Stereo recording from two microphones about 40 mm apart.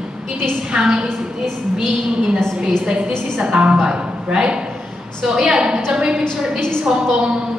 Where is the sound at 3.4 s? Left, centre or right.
Right.